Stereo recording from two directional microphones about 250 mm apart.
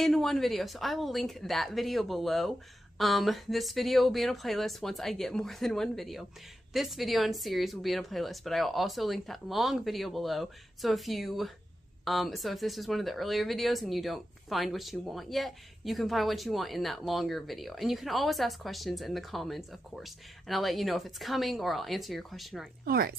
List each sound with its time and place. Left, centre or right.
0.0 s speech: centre
22.8 s a woman's voice: right